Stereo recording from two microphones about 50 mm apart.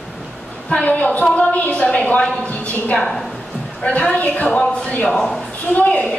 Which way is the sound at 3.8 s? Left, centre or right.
Left.